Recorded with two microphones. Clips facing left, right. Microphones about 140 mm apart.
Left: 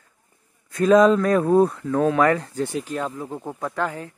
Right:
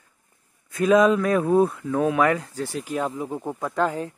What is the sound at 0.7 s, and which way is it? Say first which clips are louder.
Speech: left 2 dB; 5° right (ahead or behind).